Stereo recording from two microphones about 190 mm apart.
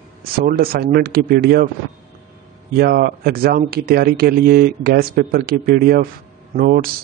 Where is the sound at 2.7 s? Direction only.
50° right (ahead or behind).